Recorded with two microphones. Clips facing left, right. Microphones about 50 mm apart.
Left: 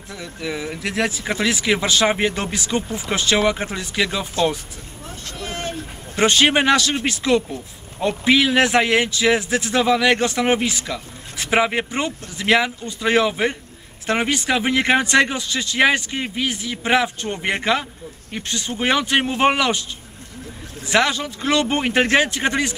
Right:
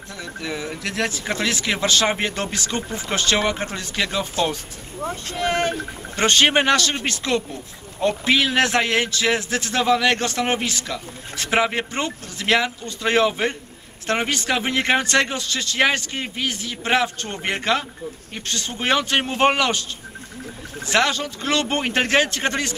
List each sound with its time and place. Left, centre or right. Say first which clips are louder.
0.2 s speech: left 1 dB; centre
5.0 s speech: right 8 dB; right
6.1 s speech: left 1 dB; centre
10.1 s speech: left 4 dB; centre
20.8 s speech: left 1 dB; centre